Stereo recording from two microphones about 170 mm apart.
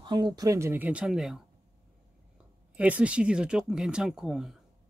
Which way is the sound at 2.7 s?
10° right (ahead or behind).